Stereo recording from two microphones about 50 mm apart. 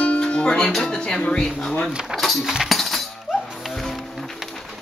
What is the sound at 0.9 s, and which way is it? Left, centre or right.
Speech, centre.